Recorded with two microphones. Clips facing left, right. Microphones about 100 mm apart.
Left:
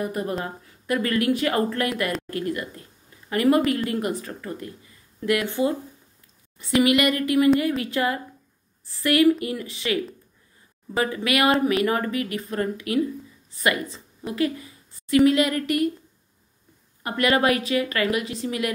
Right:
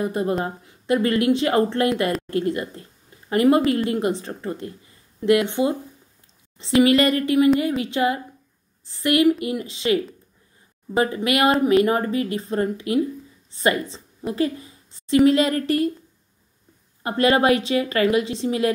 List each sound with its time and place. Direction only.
0.0 s a woman's voice: 25° right (ahead or behind)
11.0 s a woman's voice: 25° right (ahead or behind)
17.0 s a woman's voice: 30° right (ahead or behind)